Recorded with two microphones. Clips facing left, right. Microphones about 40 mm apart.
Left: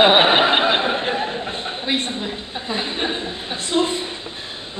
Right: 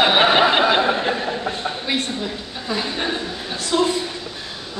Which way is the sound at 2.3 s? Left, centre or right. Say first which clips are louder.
Even; left.